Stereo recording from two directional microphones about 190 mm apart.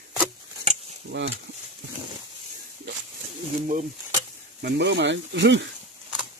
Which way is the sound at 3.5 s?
45° right (ahead or behind).